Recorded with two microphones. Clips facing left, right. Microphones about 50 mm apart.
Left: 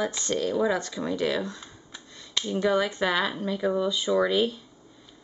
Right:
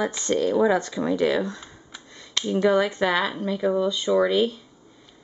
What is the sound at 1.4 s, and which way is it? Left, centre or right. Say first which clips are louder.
Speech: right 4 dB; centre.